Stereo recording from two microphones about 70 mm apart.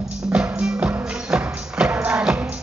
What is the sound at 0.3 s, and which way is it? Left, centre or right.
Music, centre.